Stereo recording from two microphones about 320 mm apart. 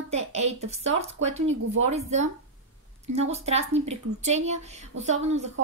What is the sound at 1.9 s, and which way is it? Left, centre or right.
Speech, right.